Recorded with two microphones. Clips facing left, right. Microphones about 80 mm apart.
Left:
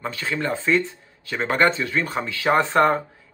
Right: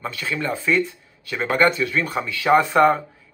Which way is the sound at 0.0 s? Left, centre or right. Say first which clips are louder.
Even; left.